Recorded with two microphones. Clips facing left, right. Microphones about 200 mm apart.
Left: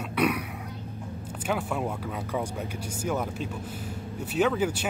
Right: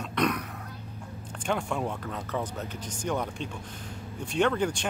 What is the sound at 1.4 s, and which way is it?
Speech, 5° left (ahead or behind).